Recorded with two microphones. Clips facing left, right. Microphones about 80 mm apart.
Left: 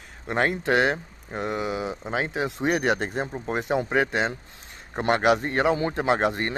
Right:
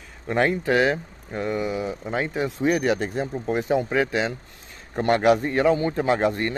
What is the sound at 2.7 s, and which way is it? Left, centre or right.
Speech, left.